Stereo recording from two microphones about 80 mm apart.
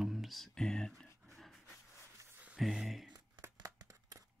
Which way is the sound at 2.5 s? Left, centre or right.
Centre.